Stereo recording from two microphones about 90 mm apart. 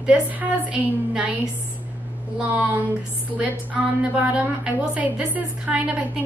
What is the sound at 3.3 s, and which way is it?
A woman's voice, 15° right (ahead or behind).